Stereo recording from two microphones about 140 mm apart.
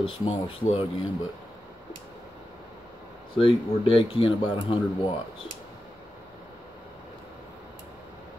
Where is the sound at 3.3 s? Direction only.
40° left (ahead or behind).